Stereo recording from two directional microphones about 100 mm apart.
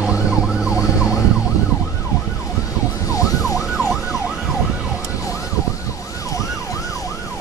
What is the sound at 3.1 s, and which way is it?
Emergency vehicle, 35° left (ahead or behind).